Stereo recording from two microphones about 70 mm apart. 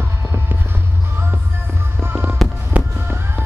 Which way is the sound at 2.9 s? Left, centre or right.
Right.